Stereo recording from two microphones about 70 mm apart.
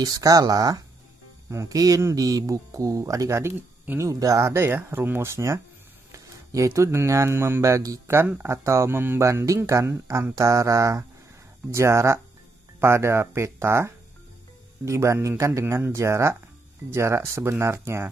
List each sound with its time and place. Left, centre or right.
0.0 s speech: right
1.5 s speech: right
2.1 s speech: right
8.1 s speech: right
15.6 s speech: right
15.9 s speech: right